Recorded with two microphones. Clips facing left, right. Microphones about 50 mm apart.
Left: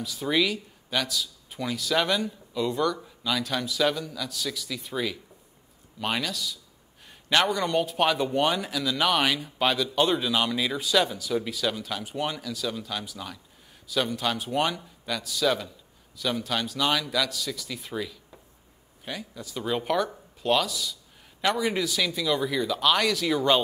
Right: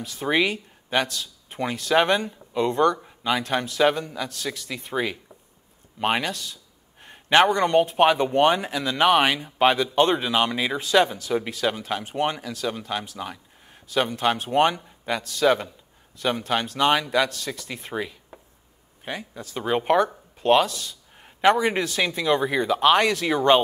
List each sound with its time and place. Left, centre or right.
0.0 s a man's voice: right
17.9 s a sound: right
19.0 s speech: right
20.6 s speech: right